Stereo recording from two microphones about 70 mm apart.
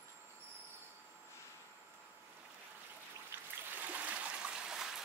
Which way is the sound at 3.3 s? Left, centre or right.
Right.